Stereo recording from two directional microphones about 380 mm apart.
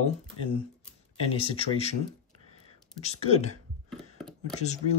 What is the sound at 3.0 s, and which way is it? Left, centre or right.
Speech, centre.